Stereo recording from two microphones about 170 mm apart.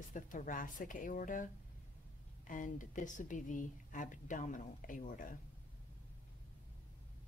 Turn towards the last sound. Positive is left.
turn(degrees=50)  # may be behind; listen again after turning